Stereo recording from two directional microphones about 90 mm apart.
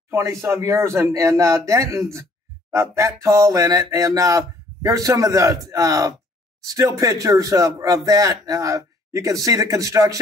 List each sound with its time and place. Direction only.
0.1 s speech: 30° right (ahead or behind)